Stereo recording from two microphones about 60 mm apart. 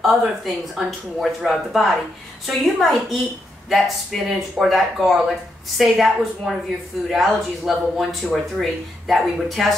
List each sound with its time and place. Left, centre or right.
0.0 s speech: centre